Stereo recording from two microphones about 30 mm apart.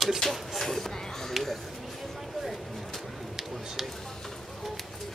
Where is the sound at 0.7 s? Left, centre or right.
Centre.